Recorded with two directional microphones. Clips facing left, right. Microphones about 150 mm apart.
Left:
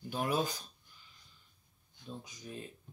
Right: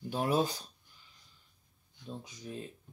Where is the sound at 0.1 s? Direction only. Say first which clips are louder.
Right 3 dB; 30° right (ahead or behind).